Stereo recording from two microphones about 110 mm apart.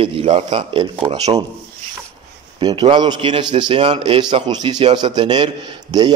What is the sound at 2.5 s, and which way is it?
A man's voice, 45° right (ahead or behind).